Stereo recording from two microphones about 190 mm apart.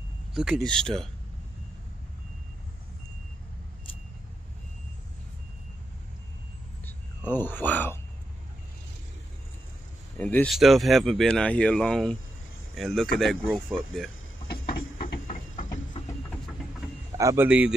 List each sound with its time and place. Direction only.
0.3 s speech: centre (ahead or behind)
7.3 s speech: 10° left (ahead or behind)
10.1 s speech: 10° left (ahead or behind)
14.5 s a sound: 50° left (ahead or behind)
16.3 s a sound: 5° left (ahead or behind)
17.2 s a man's voice: 15° right (ahead or behind)
17.5 s speech: 5° right (ahead or behind)